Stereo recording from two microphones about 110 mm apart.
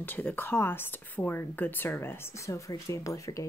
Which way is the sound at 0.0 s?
15° left (ahead or behind).